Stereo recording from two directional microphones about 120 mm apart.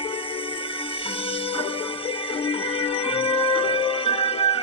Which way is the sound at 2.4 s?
50° left (ahead or behind).